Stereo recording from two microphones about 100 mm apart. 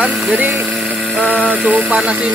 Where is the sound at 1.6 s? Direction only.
10° right (ahead or behind).